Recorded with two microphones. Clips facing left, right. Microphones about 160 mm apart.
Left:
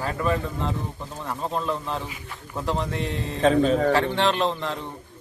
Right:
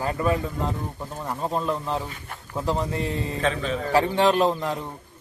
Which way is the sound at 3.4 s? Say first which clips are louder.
Left 9 dB; 40° left (ahead or behind).